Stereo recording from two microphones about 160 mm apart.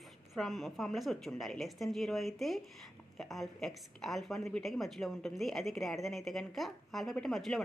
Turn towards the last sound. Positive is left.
turn(degrees=0)  # may be behind; listen again after turning